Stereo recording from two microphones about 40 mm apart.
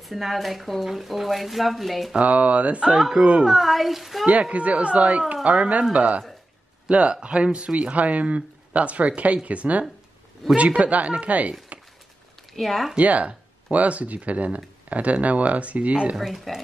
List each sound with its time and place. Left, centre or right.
0.0 s speech: centre
2.1 s speech: right
3.4 s speech: centre
4.3 s speech: right
12.5 s speech: centre
13.0 s speech: right
16.3 s speech: centre